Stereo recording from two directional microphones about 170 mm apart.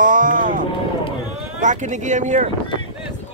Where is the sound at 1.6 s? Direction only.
45° right (ahead or behind).